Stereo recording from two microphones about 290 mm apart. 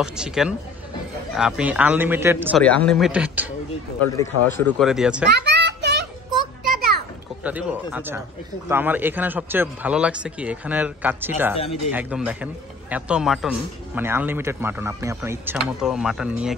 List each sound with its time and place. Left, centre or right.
0.0 s a man's voice: centre
2.6 s a man's voice: centre
4.2 s a man's voice: centre
5.3 s a sound: right
7.4 s a man's voice: centre